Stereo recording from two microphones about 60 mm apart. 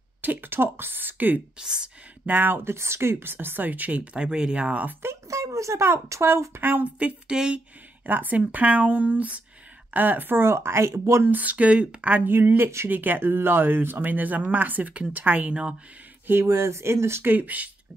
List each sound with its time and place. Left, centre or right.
0.2 s speech: right
1.6 s speech: centre
2.2 s speech: right
5.3 s speech: right
6.6 s speech: right
7.3 s speech: centre
8.0 s speech: right
11.2 s speech: right
12.3 s speech: right; by 15.7 s centre
16.3 s speech: right
17.2 s speech: right